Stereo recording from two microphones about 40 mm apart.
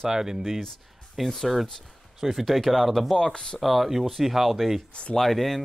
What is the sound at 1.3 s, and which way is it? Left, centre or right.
Speech, centre.